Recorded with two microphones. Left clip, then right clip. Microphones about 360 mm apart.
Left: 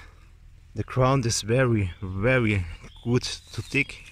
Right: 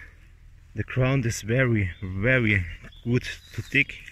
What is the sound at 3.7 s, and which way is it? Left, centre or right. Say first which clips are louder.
Speech: right 3 dB; centre.